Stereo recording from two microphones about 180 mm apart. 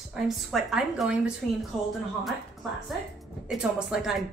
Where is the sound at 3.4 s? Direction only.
5° right (ahead or behind).